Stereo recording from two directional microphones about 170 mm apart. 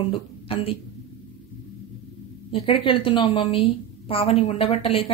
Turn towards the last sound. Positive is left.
turn(degrees=35)  # may be behind; listen again after turning